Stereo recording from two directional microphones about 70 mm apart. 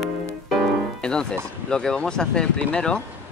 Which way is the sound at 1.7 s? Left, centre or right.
Centre.